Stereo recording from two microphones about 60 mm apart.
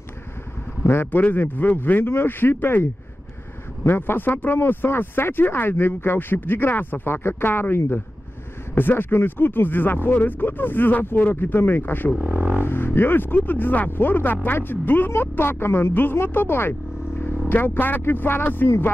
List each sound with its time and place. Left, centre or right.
0.8 s speech: left
12.2 s speech: right
12.5 s speech: left